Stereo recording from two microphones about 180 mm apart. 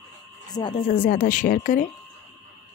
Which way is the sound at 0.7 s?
50° left (ahead or behind).